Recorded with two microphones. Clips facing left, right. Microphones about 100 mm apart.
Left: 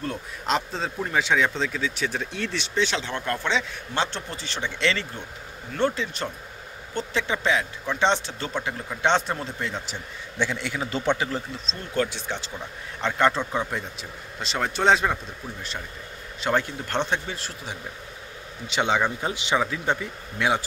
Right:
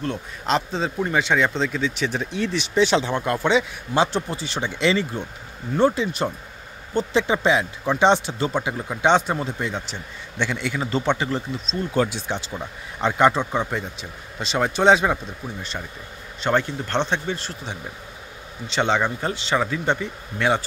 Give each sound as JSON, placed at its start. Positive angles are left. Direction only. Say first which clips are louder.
{"t": 0.0, "sound": "a man's voice", "louder": "right 3 dB", "side_deg": 0}
{"t": 2.8, "sound": "a man's voice", "louder": "right 7 dB", "side_deg": -15}
{"t": 12.3, "sound": "a man's voice", "louder": "right 4 dB", "side_deg": -15}
{"t": 16.3, "sound": "a man's voice", "louder": "right 3 dB", "side_deg": 5}